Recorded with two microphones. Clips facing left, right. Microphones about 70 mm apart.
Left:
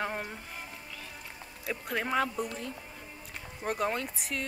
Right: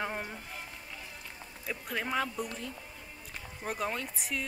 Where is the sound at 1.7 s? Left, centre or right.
Centre.